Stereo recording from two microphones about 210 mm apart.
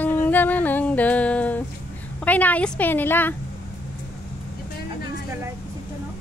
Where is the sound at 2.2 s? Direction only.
5° left (ahead or behind).